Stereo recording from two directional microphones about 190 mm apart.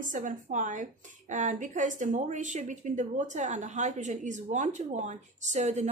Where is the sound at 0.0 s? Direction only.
45° right (ahead or behind).